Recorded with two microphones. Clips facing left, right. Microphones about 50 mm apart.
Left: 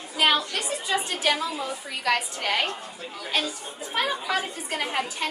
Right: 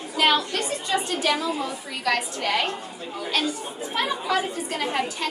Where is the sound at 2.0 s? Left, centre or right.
Centre.